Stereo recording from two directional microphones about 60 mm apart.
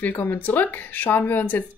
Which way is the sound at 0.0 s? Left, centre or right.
Left.